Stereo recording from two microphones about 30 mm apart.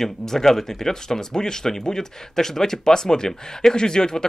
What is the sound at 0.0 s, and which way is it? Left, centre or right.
A man's voice, centre.